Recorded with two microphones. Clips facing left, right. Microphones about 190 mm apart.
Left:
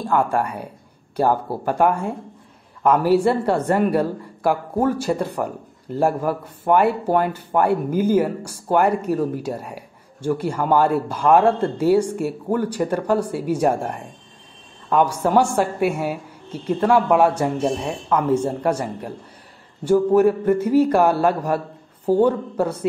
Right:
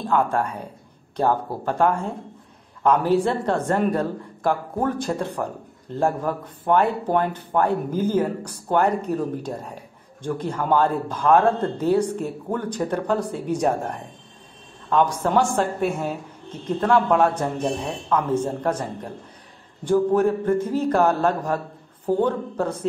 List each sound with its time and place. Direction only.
0.0 s a woman's voice: 10° left (ahead or behind)